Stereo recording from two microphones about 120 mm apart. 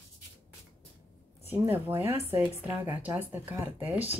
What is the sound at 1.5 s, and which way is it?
A woman's voice, 20° right (ahead or behind).